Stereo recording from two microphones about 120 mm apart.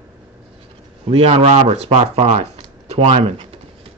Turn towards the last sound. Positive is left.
turn(degrees=-55)  # may be behind; listen again after turning